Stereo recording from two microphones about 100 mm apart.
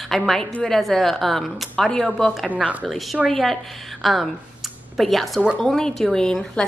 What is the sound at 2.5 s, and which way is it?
Speech, 15° right (ahead or behind).